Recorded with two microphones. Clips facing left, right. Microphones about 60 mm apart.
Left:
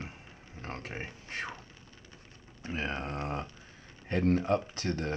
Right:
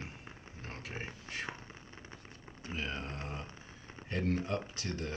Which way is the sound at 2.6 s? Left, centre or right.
Left.